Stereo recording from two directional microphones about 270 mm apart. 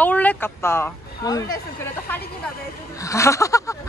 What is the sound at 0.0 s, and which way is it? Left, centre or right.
Speech, centre.